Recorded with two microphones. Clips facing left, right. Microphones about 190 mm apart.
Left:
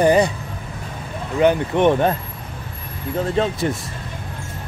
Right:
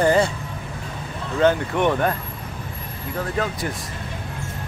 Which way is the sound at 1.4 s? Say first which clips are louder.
Left 3 dB; 20° left (ahead or behind).